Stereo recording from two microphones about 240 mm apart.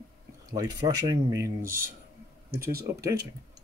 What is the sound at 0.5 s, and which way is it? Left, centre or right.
Speech, centre.